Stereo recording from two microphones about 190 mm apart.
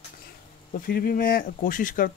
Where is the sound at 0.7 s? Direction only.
50° left (ahead or behind).